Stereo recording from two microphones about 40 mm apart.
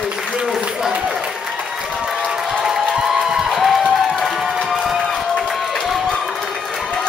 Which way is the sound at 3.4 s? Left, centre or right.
Centre.